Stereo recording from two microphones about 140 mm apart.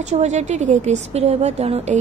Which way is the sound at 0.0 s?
55° right (ahead or behind).